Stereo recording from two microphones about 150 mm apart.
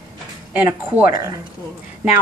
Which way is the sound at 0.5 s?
10° right (ahead or behind).